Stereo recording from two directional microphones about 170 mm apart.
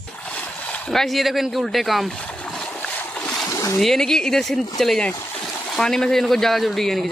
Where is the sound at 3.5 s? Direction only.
20° left (ahead or behind).